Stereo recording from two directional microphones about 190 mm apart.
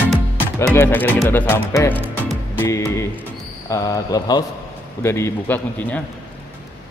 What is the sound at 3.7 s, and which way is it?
Speech, 20° left (ahead or behind).